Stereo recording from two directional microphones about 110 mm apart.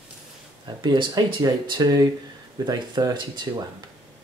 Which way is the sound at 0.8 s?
40° right (ahead or behind).